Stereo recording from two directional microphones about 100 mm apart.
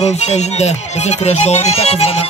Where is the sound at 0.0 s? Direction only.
90° left.